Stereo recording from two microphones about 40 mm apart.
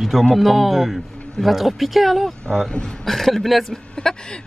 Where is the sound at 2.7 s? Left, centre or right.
Left.